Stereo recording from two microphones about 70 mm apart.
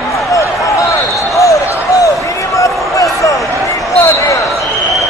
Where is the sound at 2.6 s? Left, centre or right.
Left.